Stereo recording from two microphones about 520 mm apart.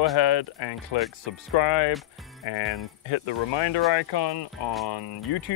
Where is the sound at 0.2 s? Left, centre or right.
Left.